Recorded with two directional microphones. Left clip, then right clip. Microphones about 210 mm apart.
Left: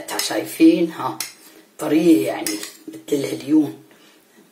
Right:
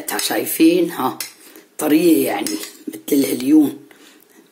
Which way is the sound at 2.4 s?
Centre (ahead or behind).